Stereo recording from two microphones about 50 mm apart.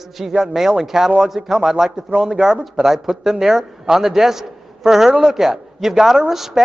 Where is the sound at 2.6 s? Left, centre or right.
Centre.